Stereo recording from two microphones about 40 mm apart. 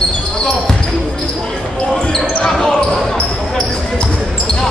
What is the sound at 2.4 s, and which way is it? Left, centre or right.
Basketball bounce, left.